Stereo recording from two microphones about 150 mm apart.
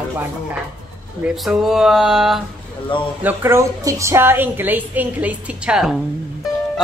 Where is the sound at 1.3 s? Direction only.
Centre (ahead or behind).